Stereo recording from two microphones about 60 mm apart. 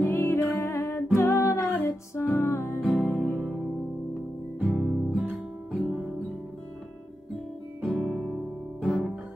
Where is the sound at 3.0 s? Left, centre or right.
Left.